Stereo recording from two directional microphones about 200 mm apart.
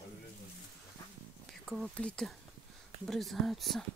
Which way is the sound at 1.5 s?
Centre (ahead or behind).